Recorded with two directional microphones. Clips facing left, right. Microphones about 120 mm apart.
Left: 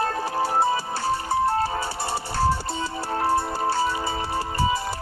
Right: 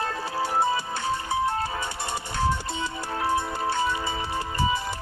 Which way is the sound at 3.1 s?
35° left (ahead or behind).